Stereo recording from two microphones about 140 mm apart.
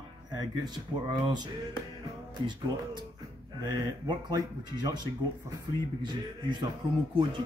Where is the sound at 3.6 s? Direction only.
30° right (ahead or behind).